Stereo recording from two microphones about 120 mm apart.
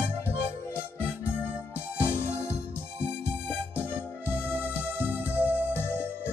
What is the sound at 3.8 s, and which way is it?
Music, 15° right (ahead or behind).